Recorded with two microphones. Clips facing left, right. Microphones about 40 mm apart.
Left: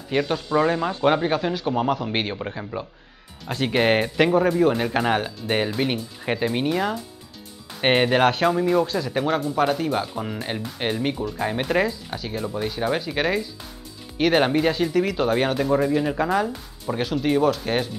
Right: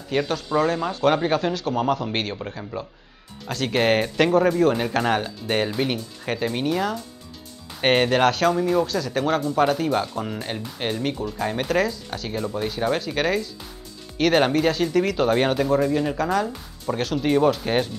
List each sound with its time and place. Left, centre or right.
0.1 s speech: centre
8.8 s speech: left
9.2 s speech: centre
12.3 s speech: centre
15.7 s speech: centre